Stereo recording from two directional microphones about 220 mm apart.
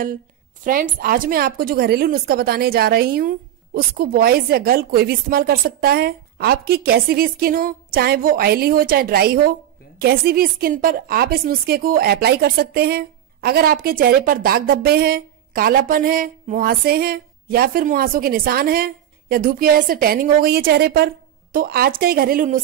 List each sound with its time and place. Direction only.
0.7 s a woman's voice: 40° right (ahead or behind)